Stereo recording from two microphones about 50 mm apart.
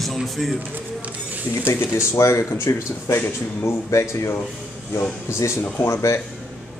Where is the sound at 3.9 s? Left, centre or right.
Left.